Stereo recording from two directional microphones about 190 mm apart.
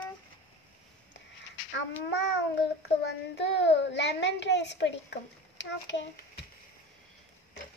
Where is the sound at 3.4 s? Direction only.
65° left (ahead or behind).